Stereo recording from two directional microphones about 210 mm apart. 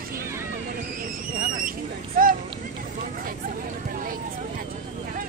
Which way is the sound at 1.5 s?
40° right (ahead or behind).